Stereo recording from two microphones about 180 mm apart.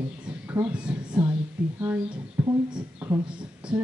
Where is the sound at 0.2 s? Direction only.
10° right (ahead or behind).